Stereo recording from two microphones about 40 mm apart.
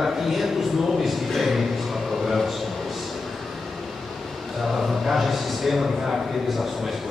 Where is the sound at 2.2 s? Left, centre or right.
Centre.